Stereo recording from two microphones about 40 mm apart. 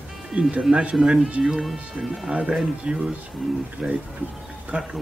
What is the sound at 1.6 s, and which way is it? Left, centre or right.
Speech, centre.